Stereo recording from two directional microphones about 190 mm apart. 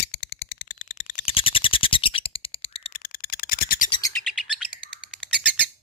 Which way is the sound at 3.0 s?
50° left (ahead or behind).